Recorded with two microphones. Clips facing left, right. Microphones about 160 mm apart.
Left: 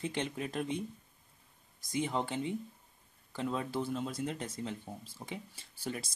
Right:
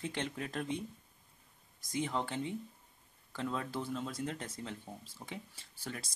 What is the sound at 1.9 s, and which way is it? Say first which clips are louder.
Speech: left 2 dB; 15° left (ahead or behind).